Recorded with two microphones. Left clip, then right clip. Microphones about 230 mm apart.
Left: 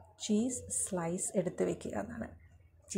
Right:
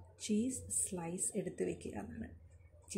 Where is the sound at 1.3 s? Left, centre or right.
Centre.